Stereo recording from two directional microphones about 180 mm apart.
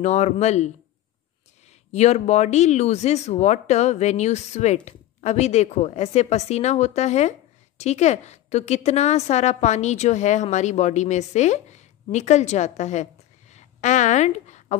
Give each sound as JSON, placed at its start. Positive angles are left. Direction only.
{"t": 0.0, "sound": "speech", "side_deg": 40}
{"t": 1.9, "sound": "a woman's voice", "side_deg": 40}